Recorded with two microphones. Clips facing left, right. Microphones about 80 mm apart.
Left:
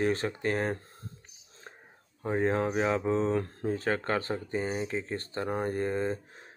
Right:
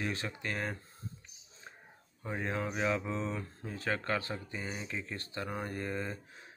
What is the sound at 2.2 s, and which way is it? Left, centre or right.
Speech, left.